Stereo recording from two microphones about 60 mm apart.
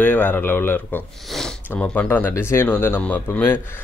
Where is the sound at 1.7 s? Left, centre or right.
Left.